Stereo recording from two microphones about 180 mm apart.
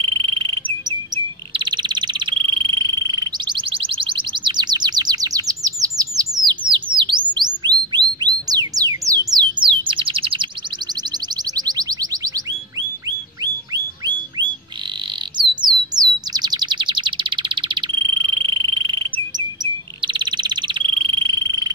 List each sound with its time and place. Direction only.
0.0 s bird: 30° right (ahead or behind)
7.0 s chirp: 25° right (ahead or behind)
7.9 s music: 25° right (ahead or behind)
11.5 s music: 20° right (ahead or behind)
15.3 s bird: 25° right (ahead or behind)